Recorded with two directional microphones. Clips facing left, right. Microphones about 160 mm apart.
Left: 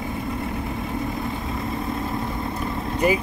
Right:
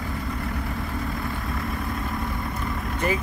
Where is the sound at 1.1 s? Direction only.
20° left (ahead or behind).